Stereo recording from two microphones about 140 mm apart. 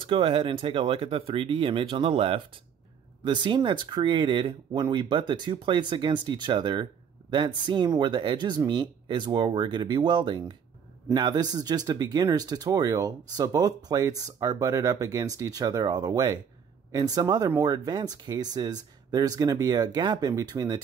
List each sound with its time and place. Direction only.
0.0 s speech: 40° right (ahead or behind)